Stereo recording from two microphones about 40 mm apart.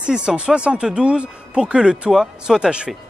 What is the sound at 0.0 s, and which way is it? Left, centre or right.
Speech, right.